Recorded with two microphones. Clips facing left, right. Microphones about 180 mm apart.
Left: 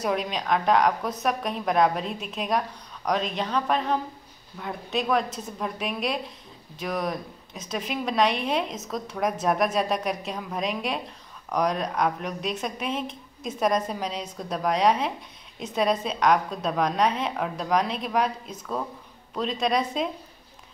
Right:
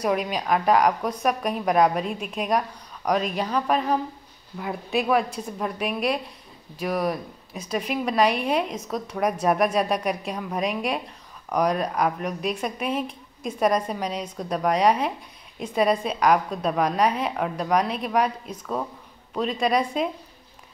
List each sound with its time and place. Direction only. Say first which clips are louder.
0.0 s a woman's voice: right 2 dB; 5° right (ahead or behind)